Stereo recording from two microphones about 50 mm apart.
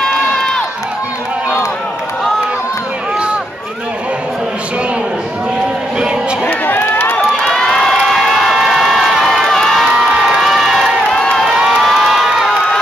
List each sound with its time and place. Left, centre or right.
0.0 s crowd: centre
6.4 s run: left
7.4 s crowd: centre
11.1 s crowd: centre
11.4 s crowd: centre